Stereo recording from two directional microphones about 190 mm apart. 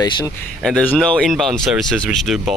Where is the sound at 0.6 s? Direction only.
5° left (ahead or behind).